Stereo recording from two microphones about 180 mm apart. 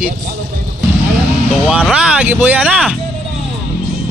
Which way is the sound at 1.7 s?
5° right (ahead or behind).